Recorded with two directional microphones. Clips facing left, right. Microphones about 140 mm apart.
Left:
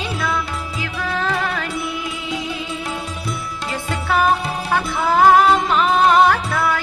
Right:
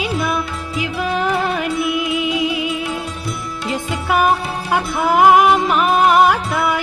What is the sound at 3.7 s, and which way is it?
Music, 15° right (ahead or behind).